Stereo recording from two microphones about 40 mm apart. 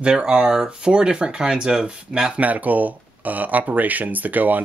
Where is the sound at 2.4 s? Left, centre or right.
Right.